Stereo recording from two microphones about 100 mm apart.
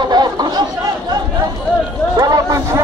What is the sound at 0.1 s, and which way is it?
Chatter, 45° right (ahead or behind).